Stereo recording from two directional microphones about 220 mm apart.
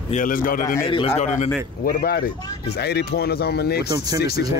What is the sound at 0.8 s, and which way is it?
Speech, 25° left (ahead or behind).